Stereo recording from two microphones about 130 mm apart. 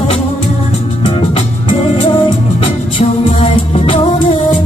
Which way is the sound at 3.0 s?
50° left (ahead or behind).